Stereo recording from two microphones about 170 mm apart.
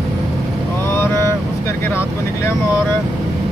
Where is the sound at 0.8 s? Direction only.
15° left (ahead or behind).